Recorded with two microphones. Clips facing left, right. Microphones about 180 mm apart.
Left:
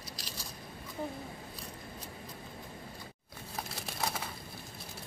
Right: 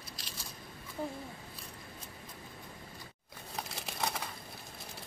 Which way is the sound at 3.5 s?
5° left (ahead or behind).